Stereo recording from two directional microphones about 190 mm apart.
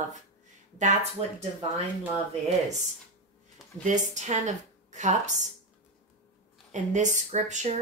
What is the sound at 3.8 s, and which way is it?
A woman's voice, 40° right (ahead or behind).